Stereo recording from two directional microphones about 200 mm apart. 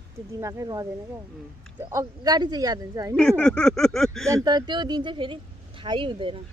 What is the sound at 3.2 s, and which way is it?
Speech, 5° left (ahead or behind).